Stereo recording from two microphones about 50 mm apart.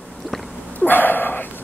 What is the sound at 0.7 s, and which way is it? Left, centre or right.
Dog, left.